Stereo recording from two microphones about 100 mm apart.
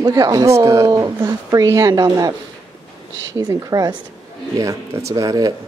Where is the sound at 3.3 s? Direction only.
35° right (ahead or behind).